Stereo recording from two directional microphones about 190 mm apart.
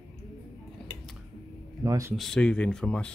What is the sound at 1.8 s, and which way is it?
Speech, 15° right (ahead or behind).